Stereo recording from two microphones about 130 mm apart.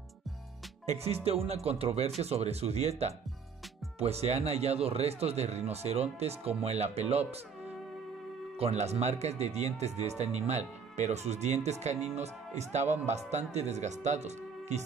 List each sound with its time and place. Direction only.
0.8 s speech: 50° right (ahead or behind)
8.5 s speech: 55° right (ahead or behind)